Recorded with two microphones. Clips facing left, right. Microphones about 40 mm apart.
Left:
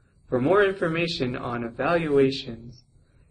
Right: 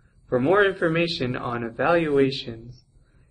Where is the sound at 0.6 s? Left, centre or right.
Right.